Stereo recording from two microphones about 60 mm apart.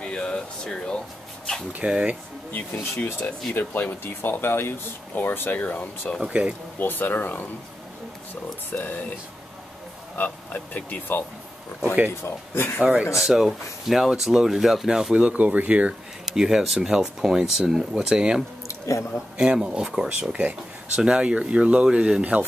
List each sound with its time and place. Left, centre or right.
0.0 s speech: centre
1.9 s speech: centre
2.5 s speech: left
3.5 s speech: left
6.4 s speech: centre
6.8 s speech: left
8.6 s speech: left
10.1 s speech: left
12.5 s speech: left
13.2 s speech: centre; by 15.9 s right
16.3 s speech: centre
18.7 s speech: left
19.3 s speech: centre